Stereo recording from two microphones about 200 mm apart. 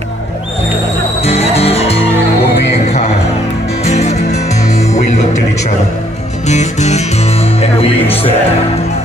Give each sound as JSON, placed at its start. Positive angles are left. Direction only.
{"t": 1.2, "sound": "music", "side_deg": 30}
{"t": 3.9, "sound": "music", "side_deg": 35}
{"t": 6.4, "sound": "music", "side_deg": 35}